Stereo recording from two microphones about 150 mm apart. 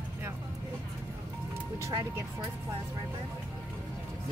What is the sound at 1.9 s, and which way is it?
Speech, 20° right (ahead or behind).